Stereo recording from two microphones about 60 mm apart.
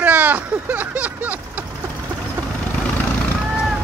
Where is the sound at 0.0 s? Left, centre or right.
Right.